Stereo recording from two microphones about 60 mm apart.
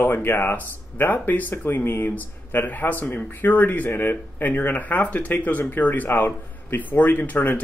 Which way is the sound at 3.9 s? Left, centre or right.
Left.